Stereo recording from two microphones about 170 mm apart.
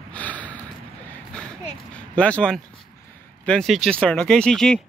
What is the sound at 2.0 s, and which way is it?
Speech, 5° left (ahead or behind).